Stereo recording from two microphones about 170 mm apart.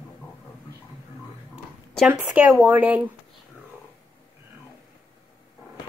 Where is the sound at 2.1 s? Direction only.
10° right (ahead or behind).